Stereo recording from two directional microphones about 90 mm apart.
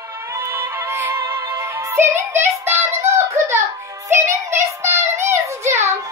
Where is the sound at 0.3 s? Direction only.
25° right (ahead or behind).